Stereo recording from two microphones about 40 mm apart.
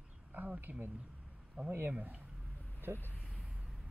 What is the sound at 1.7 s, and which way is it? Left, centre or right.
Speech, right.